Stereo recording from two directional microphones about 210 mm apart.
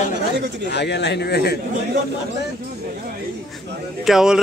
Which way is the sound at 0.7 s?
55° left (ahead or behind).